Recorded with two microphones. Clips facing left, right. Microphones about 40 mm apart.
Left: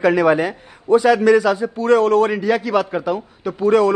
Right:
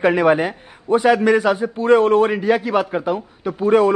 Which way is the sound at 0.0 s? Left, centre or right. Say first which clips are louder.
Even; right.